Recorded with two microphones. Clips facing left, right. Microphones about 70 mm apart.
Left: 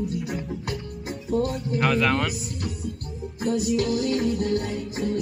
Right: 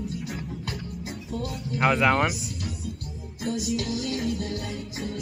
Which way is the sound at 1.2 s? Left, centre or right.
Left.